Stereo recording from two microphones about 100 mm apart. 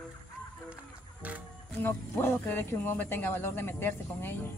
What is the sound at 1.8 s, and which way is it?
Speech, 20° left (ahead or behind).